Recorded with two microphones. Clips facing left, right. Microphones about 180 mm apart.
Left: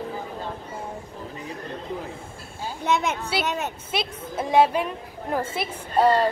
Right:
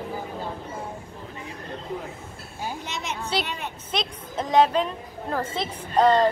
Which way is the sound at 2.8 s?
55° left (ahead or behind).